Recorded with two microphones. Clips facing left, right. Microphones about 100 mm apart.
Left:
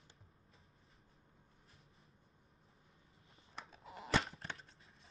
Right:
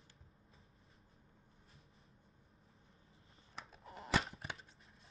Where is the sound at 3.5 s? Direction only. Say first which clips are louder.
Even; centre (ahead or behind).